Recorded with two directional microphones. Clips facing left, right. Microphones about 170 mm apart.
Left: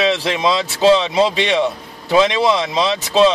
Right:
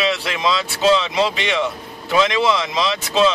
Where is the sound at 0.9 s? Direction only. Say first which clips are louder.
Left 4 dB; 25° left (ahead or behind).